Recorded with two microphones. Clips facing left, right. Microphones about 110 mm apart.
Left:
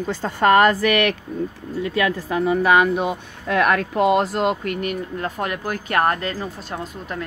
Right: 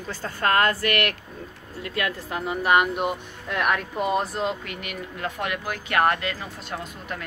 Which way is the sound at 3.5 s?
90° left.